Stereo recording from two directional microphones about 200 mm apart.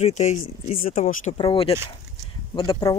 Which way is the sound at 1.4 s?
25° left (ahead or behind).